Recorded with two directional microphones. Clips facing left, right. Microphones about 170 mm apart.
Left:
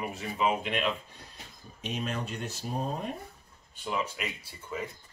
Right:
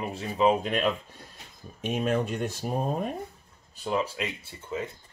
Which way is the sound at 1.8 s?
50° right (ahead or behind).